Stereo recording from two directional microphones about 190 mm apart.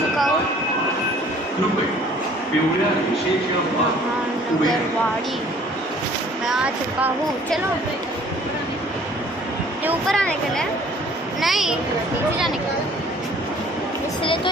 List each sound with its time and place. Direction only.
6.4 s speech: 5° right (ahead or behind)
10.0 s speech: 5° left (ahead or behind)
14.2 s speech: 25° left (ahead or behind)